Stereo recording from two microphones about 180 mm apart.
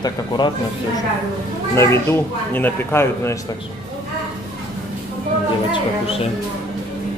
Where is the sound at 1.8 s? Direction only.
15° left (ahead or behind).